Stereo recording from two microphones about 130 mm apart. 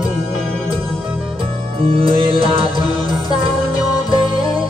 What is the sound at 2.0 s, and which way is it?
Music, 45° right (ahead or behind).